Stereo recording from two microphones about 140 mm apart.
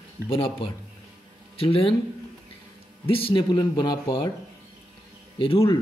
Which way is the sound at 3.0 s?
40° left (ahead or behind).